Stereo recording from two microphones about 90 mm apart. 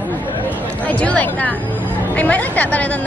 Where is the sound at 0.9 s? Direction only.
15° left (ahead or behind).